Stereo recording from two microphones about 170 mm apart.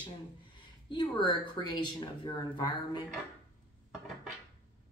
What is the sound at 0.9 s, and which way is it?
Speech, 25° left (ahead or behind).